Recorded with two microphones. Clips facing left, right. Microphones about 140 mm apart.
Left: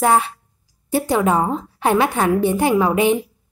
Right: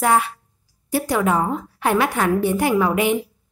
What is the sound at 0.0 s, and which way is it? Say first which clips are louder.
A woman's voice: left 2 dB; 30° left (ahead or behind).